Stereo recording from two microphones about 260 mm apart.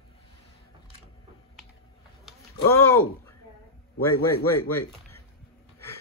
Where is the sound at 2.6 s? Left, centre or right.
Left.